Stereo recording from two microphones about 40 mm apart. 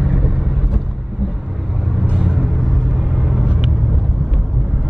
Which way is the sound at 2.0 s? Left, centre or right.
Right.